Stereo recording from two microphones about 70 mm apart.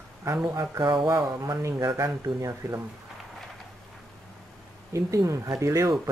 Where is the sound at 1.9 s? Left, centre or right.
Right.